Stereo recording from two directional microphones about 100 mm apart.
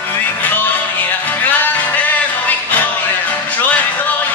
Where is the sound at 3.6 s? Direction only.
15° left (ahead or behind).